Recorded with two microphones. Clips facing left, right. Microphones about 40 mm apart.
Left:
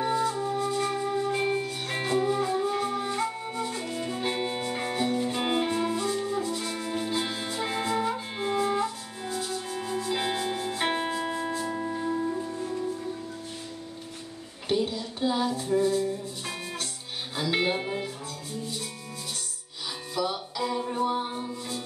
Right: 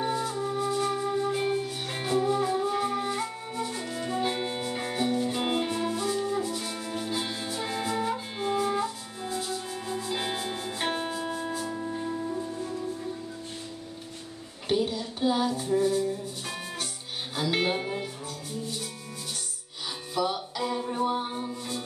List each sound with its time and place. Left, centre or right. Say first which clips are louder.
0.0 s music: left 2 dB; centre
10.8 s music: left 1 dB; centre
14.7 s a sound: even; centre
16.0 s music: even; centre
20.5 s music: left 1 dB; centre